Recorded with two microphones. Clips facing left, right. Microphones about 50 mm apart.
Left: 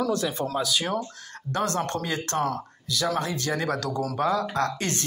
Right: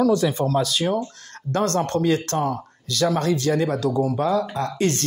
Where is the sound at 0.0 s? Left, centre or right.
Centre.